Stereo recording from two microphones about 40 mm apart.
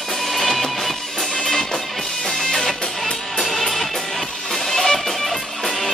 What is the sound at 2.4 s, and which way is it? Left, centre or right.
Music, centre.